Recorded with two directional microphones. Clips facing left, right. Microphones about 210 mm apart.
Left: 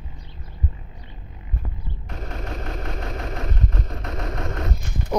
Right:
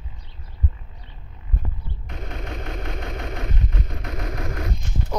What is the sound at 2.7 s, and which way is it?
Vehicle, 30° left (ahead or behind).